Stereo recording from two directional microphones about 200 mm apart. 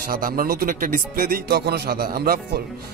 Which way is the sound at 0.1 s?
45° right (ahead or behind).